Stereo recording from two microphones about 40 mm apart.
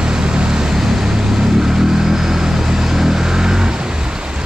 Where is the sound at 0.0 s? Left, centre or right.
Right.